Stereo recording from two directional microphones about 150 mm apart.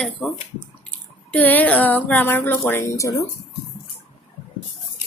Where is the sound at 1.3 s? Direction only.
10° left (ahead or behind).